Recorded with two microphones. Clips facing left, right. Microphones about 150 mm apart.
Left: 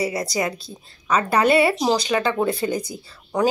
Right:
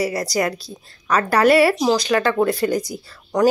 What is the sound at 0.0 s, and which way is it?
A woman's voice, 25° left (ahead or behind).